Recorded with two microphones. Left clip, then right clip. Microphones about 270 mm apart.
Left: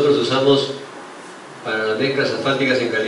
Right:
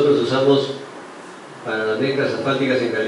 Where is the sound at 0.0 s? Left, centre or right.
Centre.